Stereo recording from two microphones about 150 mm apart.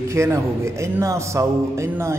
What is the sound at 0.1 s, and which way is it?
Speech, 20° right (ahead or behind).